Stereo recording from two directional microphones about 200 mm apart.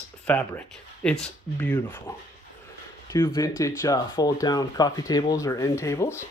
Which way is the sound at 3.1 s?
15° left (ahead or behind).